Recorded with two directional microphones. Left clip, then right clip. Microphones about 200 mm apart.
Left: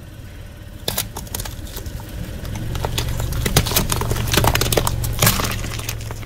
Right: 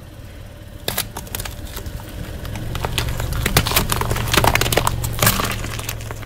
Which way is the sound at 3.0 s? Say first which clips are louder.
Right 2 dB; 5° right (ahead or behind).